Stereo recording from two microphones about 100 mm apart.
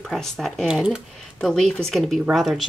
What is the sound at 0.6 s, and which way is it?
Speech, 5° right (ahead or behind).